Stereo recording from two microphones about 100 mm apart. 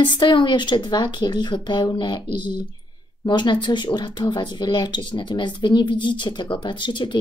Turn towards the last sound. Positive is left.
turn(degrees=50)  # may be behind; listen again after turning